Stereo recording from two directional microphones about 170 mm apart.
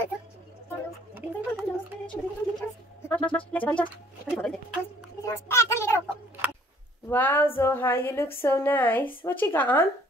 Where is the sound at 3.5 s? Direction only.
10° left (ahead or behind).